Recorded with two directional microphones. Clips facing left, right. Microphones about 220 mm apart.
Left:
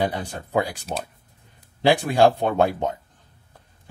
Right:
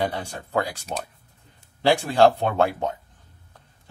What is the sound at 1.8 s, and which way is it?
Speech, 15° left (ahead or behind).